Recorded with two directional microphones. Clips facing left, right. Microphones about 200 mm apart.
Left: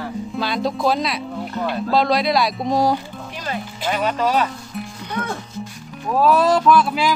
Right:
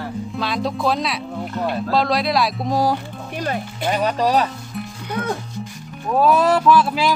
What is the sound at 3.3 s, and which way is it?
Music, 55° right (ahead or behind).